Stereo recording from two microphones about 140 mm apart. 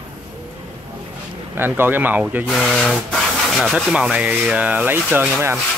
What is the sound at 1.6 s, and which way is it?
Speech, 15° right (ahead or behind).